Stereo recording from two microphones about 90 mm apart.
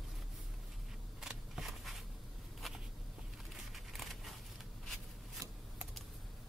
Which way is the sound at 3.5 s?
Centre (ahead or behind).